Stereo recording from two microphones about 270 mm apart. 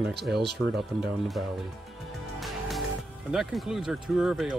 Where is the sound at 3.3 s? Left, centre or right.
Centre.